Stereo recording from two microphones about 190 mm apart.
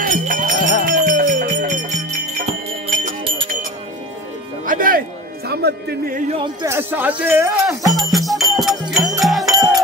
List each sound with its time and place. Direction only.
0.0 s music: 45° right (ahead or behind)
0.6 s music: 40° left (ahead or behind)
0.8 s music: 45° right (ahead or behind)
4.6 s music: 45° right (ahead or behind)
5.5 s speech: 60° right (ahead or behind)
6.3 s speech: 25° right (ahead or behind)
6.7 s speech: 10° right (ahead or behind)
7.5 s music: centre (ahead or behind)